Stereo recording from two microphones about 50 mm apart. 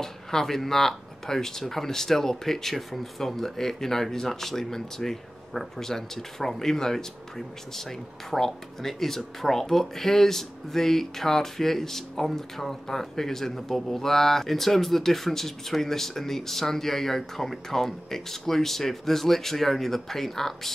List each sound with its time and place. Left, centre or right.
0.0 s speech: centre